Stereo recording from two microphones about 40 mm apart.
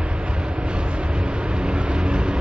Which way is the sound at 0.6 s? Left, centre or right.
Right.